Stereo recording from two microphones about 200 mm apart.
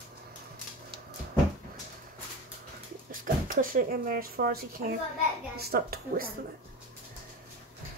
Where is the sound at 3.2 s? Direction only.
45° right (ahead or behind).